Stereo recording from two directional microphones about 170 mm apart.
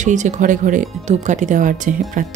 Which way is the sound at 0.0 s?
45° right (ahead or behind).